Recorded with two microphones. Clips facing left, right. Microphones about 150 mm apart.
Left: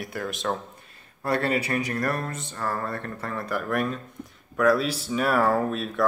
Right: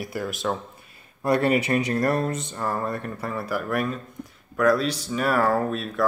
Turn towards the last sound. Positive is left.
turn(degrees=0)  # may be behind; listen again after turning